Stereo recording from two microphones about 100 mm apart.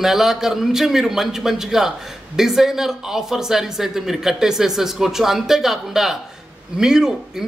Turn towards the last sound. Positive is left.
turn(degrees=-5)  # may be behind; listen again after turning